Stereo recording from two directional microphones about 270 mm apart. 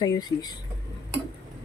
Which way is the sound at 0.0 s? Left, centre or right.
Centre.